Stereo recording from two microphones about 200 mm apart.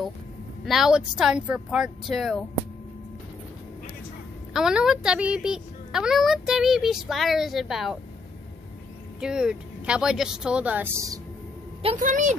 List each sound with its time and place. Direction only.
0.7 s a woman's voice: centre (ahead or behind)
4.6 s a woman's voice: 5° right (ahead or behind)
9.2 s a woman's voice: 5° right (ahead or behind)
11.8 s a woman's voice: 35° right (ahead or behind)